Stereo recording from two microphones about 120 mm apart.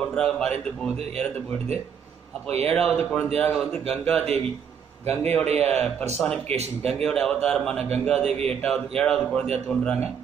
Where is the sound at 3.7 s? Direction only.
Centre (ahead or behind).